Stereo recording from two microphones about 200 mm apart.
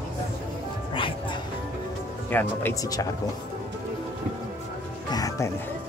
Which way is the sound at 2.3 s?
10° left (ahead or behind).